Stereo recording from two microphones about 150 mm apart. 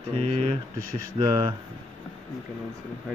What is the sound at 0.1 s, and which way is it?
Speech, 40° right (ahead or behind).